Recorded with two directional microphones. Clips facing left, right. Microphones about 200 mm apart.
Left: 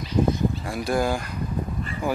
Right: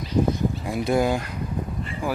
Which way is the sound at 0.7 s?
20° right (ahead or behind).